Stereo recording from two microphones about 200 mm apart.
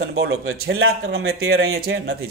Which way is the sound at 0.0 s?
55° right (ahead or behind).